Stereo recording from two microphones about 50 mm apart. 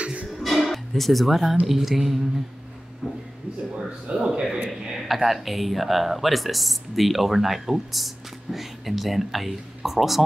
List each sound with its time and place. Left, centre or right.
0.0 s music: right
0.4 s music: centre
1.7 s speech: centre
4.3 s a man's voice: centre